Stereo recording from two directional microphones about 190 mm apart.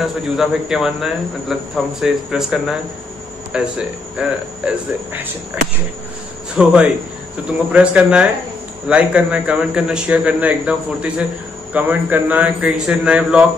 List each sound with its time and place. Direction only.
0.0 s speech: centre (ahead or behind)
6.5 s a man's voice: 5° right (ahead or behind)